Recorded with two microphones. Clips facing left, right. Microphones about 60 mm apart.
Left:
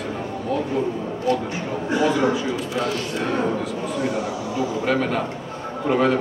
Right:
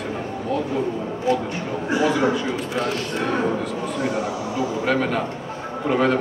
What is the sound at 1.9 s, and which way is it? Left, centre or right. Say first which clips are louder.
A man's voice: even; centre.